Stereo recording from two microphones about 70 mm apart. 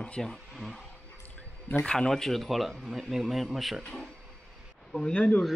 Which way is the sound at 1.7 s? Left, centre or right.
Left.